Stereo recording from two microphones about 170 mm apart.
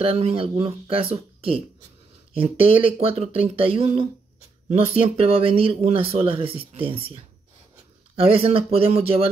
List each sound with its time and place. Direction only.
0.0 s speech: 35° right (ahead or behind)
8.2 s speech: 35° right (ahead or behind)